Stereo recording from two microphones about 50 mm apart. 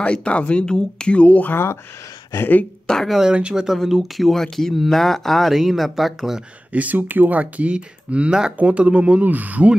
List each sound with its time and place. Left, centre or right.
0.0 s speech: left
1.5 s speech: left
2.9 s speech: centre
3.3 s speech: right
3.5 s speech: centre
5.5 s speech: centre
6.7 s speech: right
9.2 s speech: right